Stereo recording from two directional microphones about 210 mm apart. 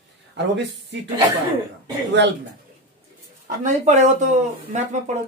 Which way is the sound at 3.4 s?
35° right (ahead or behind).